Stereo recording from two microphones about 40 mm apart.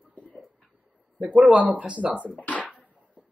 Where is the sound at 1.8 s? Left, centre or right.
Right.